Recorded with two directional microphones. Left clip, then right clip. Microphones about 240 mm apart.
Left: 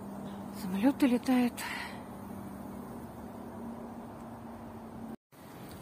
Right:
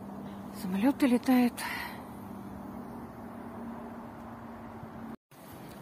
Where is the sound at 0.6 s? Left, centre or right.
Centre.